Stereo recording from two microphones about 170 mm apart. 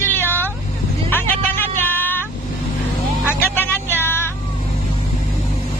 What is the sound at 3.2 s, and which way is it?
Vehicle, 15° left (ahead or behind).